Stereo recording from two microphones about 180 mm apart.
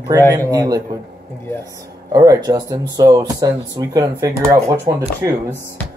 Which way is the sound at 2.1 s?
20° right (ahead or behind).